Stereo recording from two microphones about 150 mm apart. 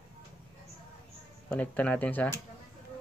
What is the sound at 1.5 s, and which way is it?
Speech, 10° left (ahead or behind).